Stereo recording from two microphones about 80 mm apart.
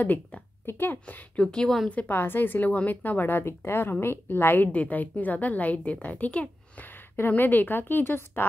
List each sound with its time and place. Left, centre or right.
0.0 s a woman's voice: left
1.9 s speech: left